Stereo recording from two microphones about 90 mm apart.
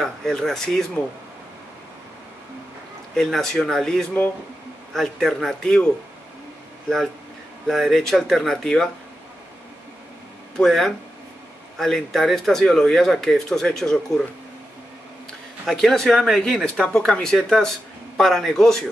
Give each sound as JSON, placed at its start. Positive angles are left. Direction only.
{"t": 0.0, "sound": "speech", "side_deg": 5}
{"t": 3.2, "sound": "speech", "side_deg": 5}
{"t": 7.6, "sound": "speech", "side_deg": 0}
{"t": 10.6, "sound": "speech", "side_deg": 0}
{"t": 15.6, "sound": "speech", "side_deg": 5}